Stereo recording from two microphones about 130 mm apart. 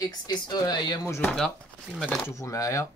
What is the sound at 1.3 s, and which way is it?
Speech, centre (ahead or behind).